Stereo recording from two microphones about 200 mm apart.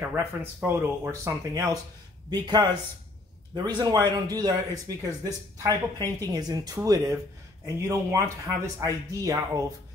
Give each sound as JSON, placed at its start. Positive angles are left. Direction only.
{"t": 0.1, "sound": "speech", "side_deg": -10}